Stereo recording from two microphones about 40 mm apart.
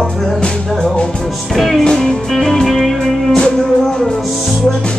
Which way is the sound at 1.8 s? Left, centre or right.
Centre.